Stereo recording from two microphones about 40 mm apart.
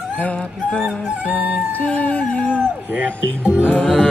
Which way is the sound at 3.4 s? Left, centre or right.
Right.